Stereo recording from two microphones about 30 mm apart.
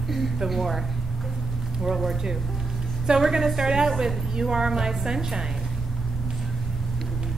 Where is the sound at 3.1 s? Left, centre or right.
Centre.